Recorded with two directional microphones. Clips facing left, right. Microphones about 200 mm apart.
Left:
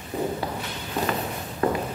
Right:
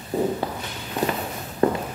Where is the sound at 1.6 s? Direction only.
30° right (ahead or behind).